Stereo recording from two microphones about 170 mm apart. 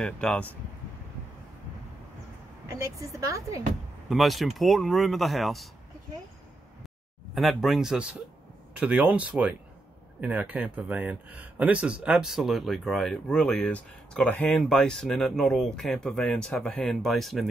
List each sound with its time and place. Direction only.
0.0 s speech: 5° left (ahead or behind)
2.7 s speech: 20° right (ahead or behind)
4.1 s speech: centre (ahead or behind)
7.3 s speech: centre (ahead or behind)